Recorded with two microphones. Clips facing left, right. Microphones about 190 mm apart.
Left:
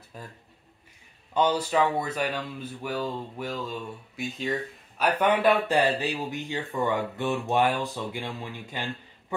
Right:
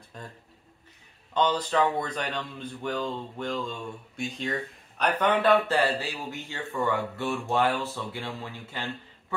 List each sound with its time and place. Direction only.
0.1 s speech: 5° left (ahead or behind)
1.3 s speech: 10° left (ahead or behind)